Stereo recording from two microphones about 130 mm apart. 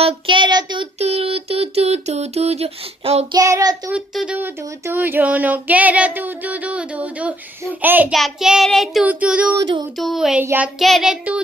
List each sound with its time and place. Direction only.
0.0 s child singing: 40° right (ahead or behind)
0.9 s a sound: 50° right (ahead or behind)
3.3 s child singing: 30° right (ahead or behind)
3.9 s female singing: 5° right (ahead or behind)
4.4 s female singing: 15° right (ahead or behind)
8.1 s child singing: centre (ahead or behind)
9.0 s female singing: 10° right (ahead or behind)
9.6 s child singing: 35° right (ahead or behind)
9.9 s child singing: centre (ahead or behind)
10.4 s female singing: 15° right (ahead or behind)
10.8 s child singing: centre (ahead or behind)